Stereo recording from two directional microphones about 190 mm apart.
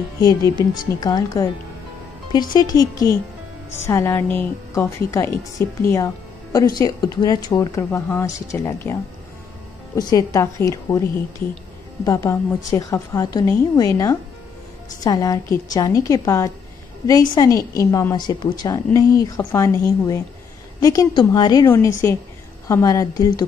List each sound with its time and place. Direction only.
0.2 s a woman's voice: 15° left (ahead or behind)
9.9 s a woman's voice: 20° left (ahead or behind)